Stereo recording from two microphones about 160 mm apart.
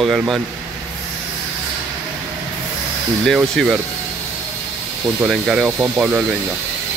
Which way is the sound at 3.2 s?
Centre (ahead or behind).